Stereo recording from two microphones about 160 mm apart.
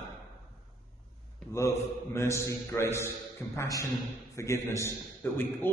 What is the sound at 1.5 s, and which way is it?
A man's voice, 15° left (ahead or behind).